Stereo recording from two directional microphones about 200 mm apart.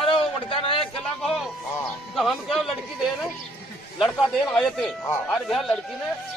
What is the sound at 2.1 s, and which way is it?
Speech, centre (ahead or behind).